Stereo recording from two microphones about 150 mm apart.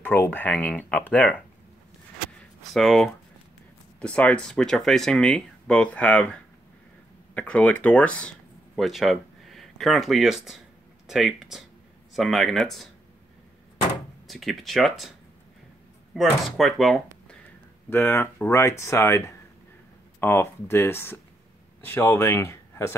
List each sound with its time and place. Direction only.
0.0 s speech: 10° left (ahead or behind)
2.7 s speech: centre (ahead or behind)
14.2 s speech: centre (ahead or behind)
17.8 s speech: 15° left (ahead or behind)